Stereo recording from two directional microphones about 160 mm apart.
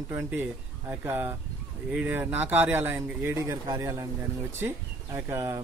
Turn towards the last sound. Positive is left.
turn(degrees=-15)  # may be behind; listen again after turning